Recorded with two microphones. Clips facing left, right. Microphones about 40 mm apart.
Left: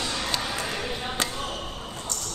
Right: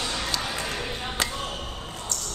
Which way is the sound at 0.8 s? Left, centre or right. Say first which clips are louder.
Left 1 dB; centre.